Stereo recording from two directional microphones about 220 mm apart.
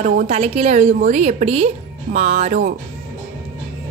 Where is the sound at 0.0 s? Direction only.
30° right (ahead or behind).